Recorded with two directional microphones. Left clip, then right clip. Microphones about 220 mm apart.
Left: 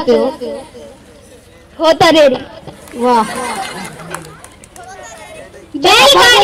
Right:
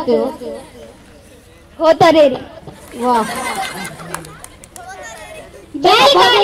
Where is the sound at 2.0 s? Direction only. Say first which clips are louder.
Left 3 dB; 30° left (ahead or behind).